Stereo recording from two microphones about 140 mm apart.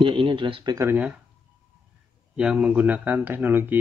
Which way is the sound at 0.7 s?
20° right (ahead or behind).